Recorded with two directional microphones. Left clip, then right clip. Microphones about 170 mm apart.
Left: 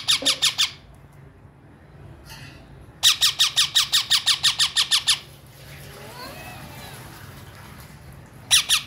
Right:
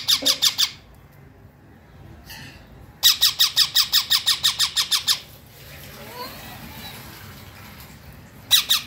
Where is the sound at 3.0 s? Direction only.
5° left (ahead or behind).